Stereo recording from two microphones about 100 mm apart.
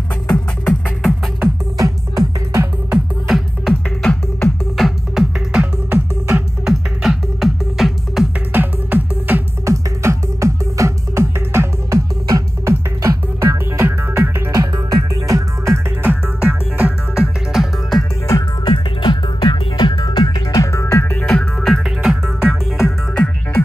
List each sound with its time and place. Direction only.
0.3 s music: 5° left (ahead or behind)
1.4 s music: 30° right (ahead or behind)
3.3 s music: centre (ahead or behind)
8.5 s music: 15° right (ahead or behind)
9.7 s music: 30° right (ahead or behind)
13.8 s music: 20° right (ahead or behind)
14.5 s music: 35° right (ahead or behind)
16.0 s music: 15° right (ahead or behind)
18.6 s music: 55° left (ahead or behind)
20.6 s music: 30° left (ahead or behind); by 22.9 s 5° right (ahead or behind)